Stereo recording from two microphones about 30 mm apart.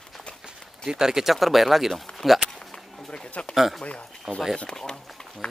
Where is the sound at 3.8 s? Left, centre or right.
Left.